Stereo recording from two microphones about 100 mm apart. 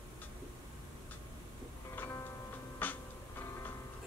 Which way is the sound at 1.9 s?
20° left (ahead or behind).